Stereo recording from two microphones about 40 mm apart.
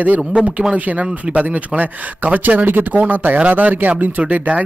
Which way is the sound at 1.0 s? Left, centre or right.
Right.